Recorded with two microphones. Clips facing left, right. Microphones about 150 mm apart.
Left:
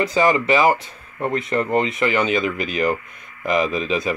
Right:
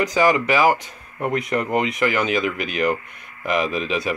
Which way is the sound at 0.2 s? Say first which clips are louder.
Left 1 dB; 10° right (ahead or behind).